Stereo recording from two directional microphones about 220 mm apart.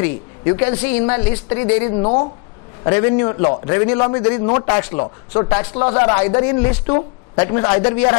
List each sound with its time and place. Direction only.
0.0 s speech: 15° left (ahead or behind)
2.0 s speech: 30° left (ahead or behind)
2.8 s speech: 20° left (ahead or behind)